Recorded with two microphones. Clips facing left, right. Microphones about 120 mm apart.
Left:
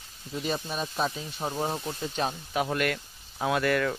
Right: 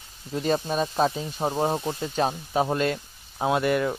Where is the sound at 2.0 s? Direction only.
40° right (ahead or behind).